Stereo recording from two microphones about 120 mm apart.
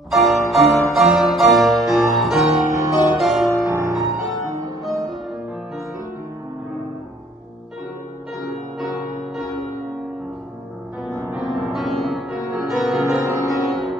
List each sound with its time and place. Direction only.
0.1 s music: centre (ahead or behind)
0.9 s keyboard: 5° right (ahead or behind)
3.2 s music: centre (ahead or behind)
8.4 s music: centre (ahead or behind)
11.3 s music: centre (ahead or behind)
13.2 s music: 25° right (ahead or behind)
13.7 s music: centre (ahead or behind)